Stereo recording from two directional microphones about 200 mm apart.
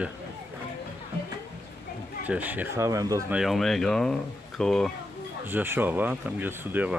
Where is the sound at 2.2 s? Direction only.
10° right (ahead or behind).